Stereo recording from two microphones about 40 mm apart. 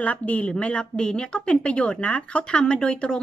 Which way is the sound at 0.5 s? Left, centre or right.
Left.